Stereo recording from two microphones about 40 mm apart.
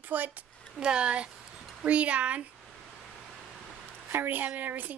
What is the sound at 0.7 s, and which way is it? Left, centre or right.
Speech, right.